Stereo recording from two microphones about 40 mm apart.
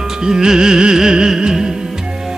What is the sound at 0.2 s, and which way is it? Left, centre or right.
Music, centre.